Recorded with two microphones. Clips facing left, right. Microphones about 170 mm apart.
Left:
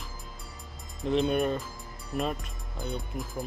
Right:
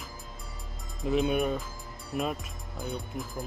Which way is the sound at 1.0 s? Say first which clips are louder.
Left 1 dB; 5° right (ahead or behind).